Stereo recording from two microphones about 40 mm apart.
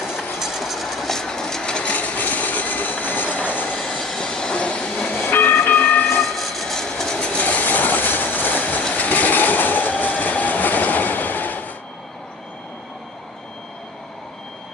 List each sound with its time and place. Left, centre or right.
0.4 s train: centre; by 1.9 s left
1.9 s train: left
4.0 s train: centre
4.3 s train: centre
5.1 s train: left
6.0 s train: centre
7.2 s train: left
7.4 s vehicle: left
8.9 s train: left